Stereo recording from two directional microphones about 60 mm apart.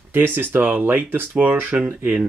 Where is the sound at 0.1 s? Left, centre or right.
Right.